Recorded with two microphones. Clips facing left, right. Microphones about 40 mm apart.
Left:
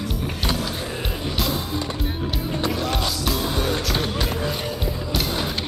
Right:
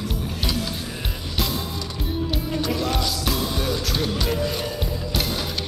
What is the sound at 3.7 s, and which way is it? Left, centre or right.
Music, left.